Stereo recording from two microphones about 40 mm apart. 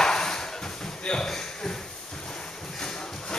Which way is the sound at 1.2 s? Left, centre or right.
Centre.